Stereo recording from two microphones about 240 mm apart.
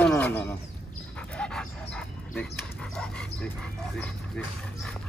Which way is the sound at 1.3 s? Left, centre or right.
Centre.